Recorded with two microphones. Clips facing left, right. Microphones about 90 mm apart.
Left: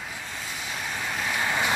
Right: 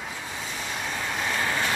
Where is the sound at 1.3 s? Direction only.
15° left (ahead or behind).